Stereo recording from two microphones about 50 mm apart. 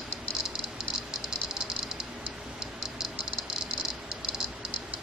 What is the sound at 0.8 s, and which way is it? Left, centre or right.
Rattle, centre.